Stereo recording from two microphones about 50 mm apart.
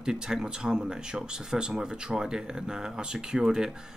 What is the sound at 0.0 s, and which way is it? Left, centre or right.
Speech, centre.